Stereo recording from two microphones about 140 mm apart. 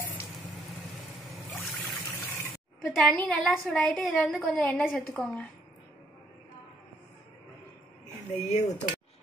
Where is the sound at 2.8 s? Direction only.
5° left (ahead or behind).